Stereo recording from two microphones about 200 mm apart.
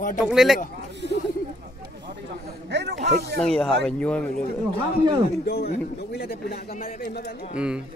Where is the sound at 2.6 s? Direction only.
60° right (ahead or behind).